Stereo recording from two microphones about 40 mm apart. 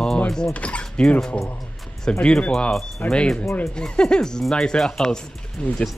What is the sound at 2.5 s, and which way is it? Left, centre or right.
Speech, centre.